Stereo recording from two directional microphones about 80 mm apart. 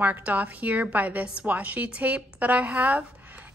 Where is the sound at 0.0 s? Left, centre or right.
Right.